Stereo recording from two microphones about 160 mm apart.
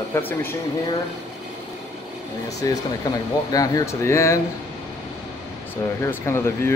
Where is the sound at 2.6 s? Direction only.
20° left (ahead or behind).